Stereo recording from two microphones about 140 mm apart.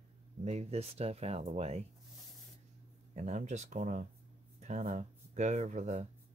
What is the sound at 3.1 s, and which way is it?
Speech, 55° right (ahead or behind).